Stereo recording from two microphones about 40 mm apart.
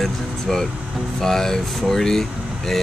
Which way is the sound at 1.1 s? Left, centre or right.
Centre.